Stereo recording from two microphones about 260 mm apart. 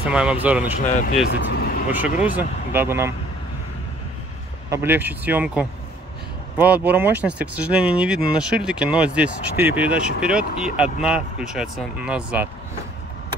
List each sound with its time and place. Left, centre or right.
0.1 s speech: centre
1.3 s speech: left
1.9 s speech: centre
4.6 s speech: centre